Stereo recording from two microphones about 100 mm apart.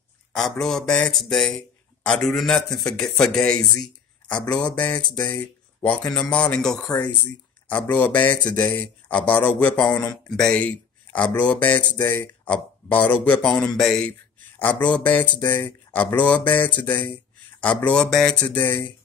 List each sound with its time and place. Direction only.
0.3 s a man's voice: 5° left (ahead or behind)
14.6 s speech: 15° left (ahead or behind)